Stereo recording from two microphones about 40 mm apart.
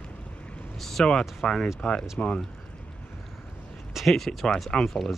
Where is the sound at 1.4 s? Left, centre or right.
Centre.